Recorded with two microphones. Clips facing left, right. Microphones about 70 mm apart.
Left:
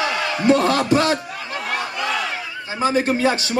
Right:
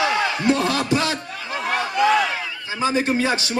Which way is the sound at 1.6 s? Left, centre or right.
Right.